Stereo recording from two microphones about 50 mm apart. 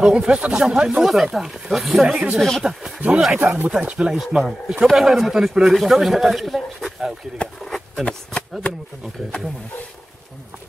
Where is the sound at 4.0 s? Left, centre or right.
Centre.